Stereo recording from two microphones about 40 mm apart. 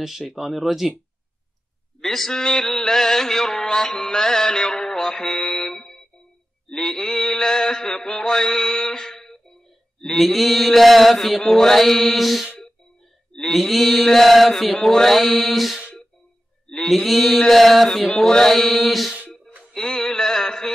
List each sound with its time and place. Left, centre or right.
0.3 s speech: centre
2.0 s mantra: centre
10.1 s mantra: centre
13.5 s mantra: centre
16.6 s mantra: centre
16.9 s mantra: centre
18.0 s mantra: centre
19.7 s a sound: centre